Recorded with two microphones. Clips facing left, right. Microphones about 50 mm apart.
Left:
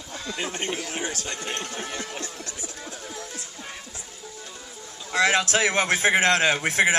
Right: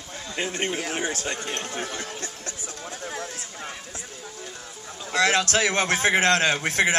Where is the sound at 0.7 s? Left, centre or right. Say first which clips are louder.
Right 3 dB; right.